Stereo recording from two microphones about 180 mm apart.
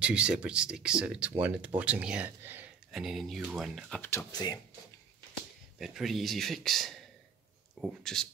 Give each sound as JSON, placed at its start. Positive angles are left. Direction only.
{"t": 0.0, "sound": "speech", "side_deg": -5}
{"t": 4.0, "sound": "speech", "side_deg": 15}
{"t": 5.8, "sound": "speech", "side_deg": 0}